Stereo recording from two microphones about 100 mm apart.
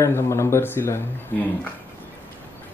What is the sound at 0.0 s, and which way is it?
A man's voice, 25° left (ahead or behind).